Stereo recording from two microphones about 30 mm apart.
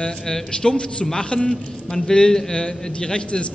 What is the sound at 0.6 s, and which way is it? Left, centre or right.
Speech, centre.